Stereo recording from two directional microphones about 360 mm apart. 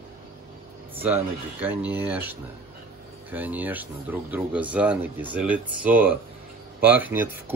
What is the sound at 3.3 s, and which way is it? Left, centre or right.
Speech, centre.